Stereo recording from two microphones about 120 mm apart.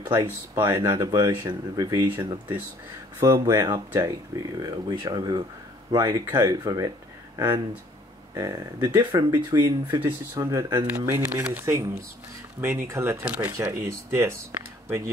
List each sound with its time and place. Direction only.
0.2 s speech: 30° right (ahead or behind)
3.2 s speech: 25° right (ahead or behind)
13.2 s speech: 10° right (ahead or behind)
13.5 s speech: 25° right (ahead or behind)